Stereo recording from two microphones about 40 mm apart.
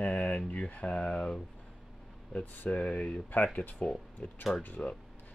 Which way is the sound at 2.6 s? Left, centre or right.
Left.